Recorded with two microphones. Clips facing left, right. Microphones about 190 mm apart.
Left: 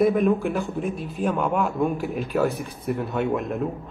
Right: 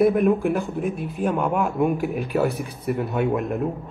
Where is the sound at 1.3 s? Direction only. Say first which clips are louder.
Right 1 dB; centre (ahead or behind).